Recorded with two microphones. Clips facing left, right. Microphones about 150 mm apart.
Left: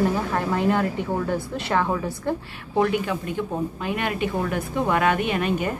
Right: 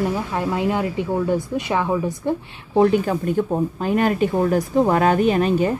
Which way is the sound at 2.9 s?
40° right (ahead or behind).